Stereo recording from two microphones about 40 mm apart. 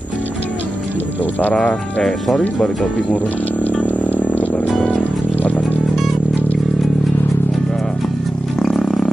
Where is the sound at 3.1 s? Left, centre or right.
Left.